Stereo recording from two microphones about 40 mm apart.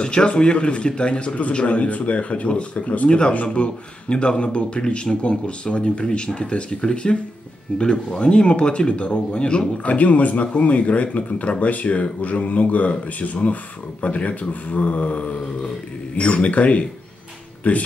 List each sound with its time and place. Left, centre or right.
0.0 s a man's voice: left
2.9 s speech: left
3.2 s a man's voice: left
9.8 s speech: left